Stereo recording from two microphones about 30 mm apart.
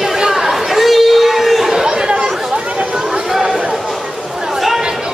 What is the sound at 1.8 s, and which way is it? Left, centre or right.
Chatter, right.